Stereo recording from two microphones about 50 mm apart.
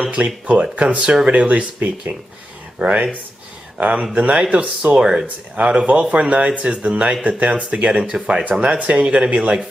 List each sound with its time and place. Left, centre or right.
0.0 s speech: right
2.8 s speech: right
8.9 s speech: centre